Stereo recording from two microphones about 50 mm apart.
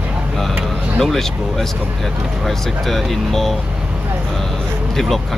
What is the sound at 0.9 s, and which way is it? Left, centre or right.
Speech, centre.